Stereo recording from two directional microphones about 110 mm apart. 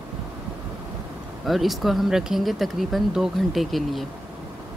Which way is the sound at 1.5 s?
Centre (ahead or behind).